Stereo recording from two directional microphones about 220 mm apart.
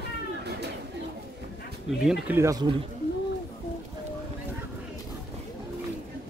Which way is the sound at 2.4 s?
15° right (ahead or behind).